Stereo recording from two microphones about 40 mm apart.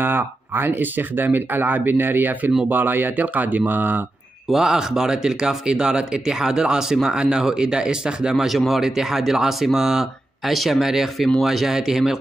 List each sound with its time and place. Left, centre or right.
0.0 s speech: right
4.6 s speech: centre